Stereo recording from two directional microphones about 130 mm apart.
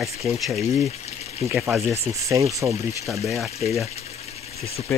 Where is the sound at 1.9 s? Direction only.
25° right (ahead or behind).